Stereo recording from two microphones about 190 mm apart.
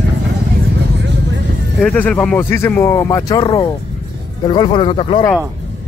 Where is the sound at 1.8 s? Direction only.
5° left (ahead or behind); by 5.2 s 30° left (ahead or behind).